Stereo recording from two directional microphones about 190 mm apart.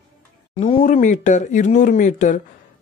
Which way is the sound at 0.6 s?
30° left (ahead or behind).